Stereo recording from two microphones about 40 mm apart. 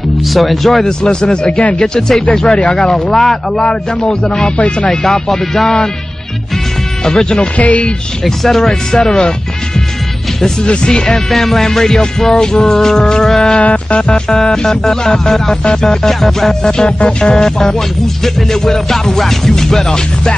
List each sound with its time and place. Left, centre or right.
0.3 s speech: centre
0.8 s music: centre
4.0 s speech: left
4.8 s music: centre
7.1 s music: centre
7.5 s speech: left
8.4 s music: centre
10.7 s speech: left
11.2 s music: centre
13.6 s music: left
14.3 s music: centre
16.7 s music: left